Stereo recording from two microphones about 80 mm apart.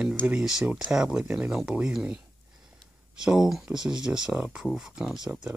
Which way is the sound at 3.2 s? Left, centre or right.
Centre.